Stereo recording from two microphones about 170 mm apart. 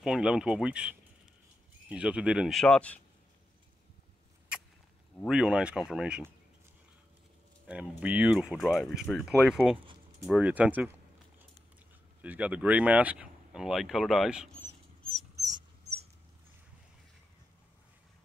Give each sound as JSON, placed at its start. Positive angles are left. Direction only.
{"t": 0.0, "sound": "speech", "side_deg": -5}
{"t": 5.3, "sound": "speech", "side_deg": -5}
{"t": 7.6, "sound": "speech", "side_deg": -10}
{"t": 12.2, "sound": "speech", "side_deg": -10}
{"t": 14.6, "sound": "rodents", "side_deg": 5}
{"t": 15.3, "sound": "dog", "side_deg": -20}